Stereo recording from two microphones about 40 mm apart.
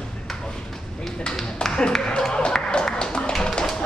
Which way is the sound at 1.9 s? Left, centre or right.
Centre.